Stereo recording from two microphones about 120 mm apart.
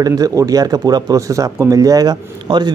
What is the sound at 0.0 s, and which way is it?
Speech, 30° right (ahead or behind).